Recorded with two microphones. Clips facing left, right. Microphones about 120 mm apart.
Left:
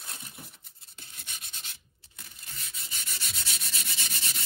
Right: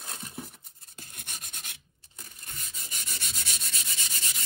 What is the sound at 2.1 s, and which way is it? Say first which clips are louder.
Sanding: right 2 dB; 50° right (ahead or behind).